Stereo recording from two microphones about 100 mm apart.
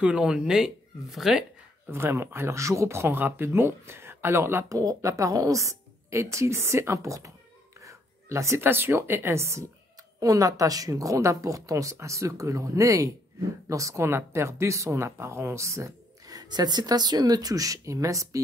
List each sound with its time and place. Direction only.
0.0 s speech: 10° right (ahead or behind)
1.9 s speech: 25° right (ahead or behind)
4.7 s a woman's voice: 35° right (ahead or behind)